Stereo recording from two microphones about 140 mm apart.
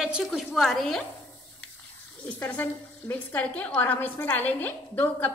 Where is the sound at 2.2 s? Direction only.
10° left (ahead or behind).